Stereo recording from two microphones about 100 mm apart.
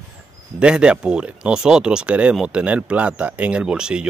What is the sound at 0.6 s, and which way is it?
Speech, 10° right (ahead or behind).